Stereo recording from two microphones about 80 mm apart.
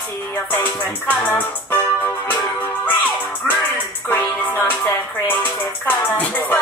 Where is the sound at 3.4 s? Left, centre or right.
Left.